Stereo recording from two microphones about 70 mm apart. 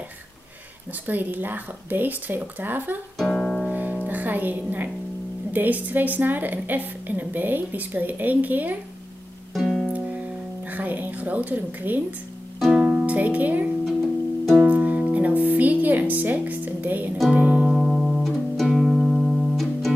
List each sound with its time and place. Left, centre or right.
1.0 s a woman's voice: right
3.2 s music: centre
3.7 s music: right
5.5 s a woman's voice: right
9.5 s music: centre
9.9 s music: centre
12.7 s music: centre
17.6 s music: centre